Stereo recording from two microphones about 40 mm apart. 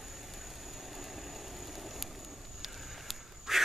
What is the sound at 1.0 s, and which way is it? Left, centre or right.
Vehicle, centre.